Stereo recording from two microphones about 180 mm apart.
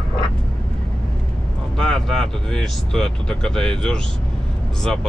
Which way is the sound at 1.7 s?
5° left (ahead or behind).